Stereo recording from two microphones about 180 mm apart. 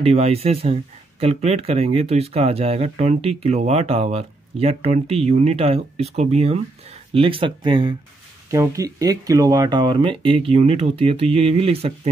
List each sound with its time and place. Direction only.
0.0 s speech: 35° right (ahead or behind)